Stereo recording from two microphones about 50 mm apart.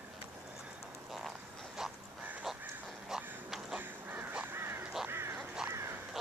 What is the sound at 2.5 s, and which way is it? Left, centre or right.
Crow, centre.